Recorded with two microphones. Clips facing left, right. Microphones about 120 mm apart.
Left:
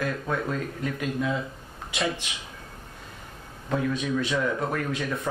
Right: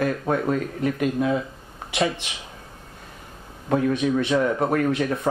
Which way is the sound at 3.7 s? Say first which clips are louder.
Right 6 dB; 55° right (ahead or behind).